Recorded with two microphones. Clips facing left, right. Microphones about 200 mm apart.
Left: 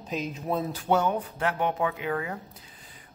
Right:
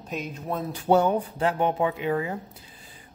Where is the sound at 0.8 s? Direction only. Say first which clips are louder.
Right 6 dB; 35° right (ahead or behind).